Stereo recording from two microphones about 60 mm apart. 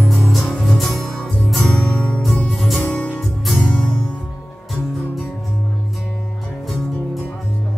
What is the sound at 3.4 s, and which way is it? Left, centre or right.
Music, centre.